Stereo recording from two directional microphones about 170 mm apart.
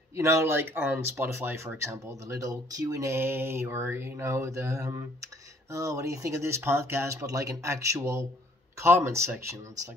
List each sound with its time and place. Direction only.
0.1 s speech: 15° right (ahead or behind)